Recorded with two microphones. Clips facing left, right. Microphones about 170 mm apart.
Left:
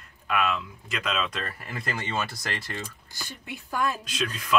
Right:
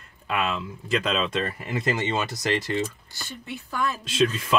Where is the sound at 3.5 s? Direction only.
15° left (ahead or behind).